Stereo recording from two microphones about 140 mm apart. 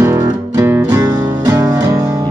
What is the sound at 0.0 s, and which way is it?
Music, 20° right (ahead or behind).